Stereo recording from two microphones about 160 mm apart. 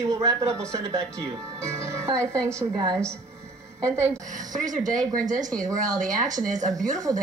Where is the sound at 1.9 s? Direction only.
15° right (ahead or behind).